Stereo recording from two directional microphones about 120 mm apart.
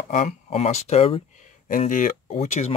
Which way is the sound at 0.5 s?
60° left (ahead or behind).